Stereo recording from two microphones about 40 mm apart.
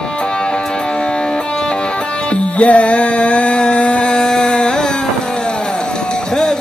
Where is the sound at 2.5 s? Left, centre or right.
Left.